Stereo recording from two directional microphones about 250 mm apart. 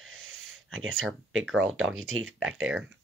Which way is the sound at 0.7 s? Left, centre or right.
Right.